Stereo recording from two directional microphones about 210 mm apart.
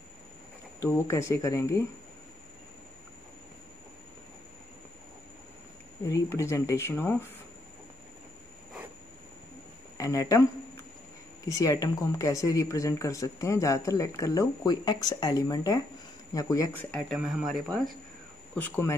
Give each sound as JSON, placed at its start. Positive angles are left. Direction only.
{"t": 0.7, "sound": "speech", "side_deg": 15}
{"t": 6.0, "sound": "speech", "side_deg": 15}
{"t": 9.9, "sound": "speech", "side_deg": 15}
{"t": 11.5, "sound": "speech", "side_deg": 15}
{"t": 16.9, "sound": "speech", "side_deg": 0}